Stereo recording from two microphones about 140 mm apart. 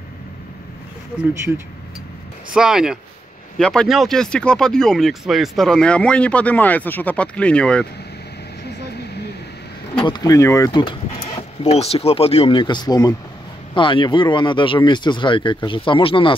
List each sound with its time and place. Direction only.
2.5 s speech: 5° right (ahead or behind)
10.0 s speech: 30° left (ahead or behind)
11.6 s speech: 50° left (ahead or behind)